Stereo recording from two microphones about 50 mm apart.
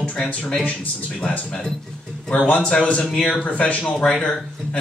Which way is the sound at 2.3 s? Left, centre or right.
Left.